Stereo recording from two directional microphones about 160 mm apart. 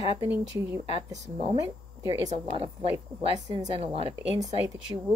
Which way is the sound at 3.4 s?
25° right (ahead or behind).